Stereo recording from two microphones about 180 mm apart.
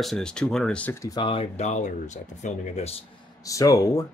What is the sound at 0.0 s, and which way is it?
Speech, 5° left (ahead or behind).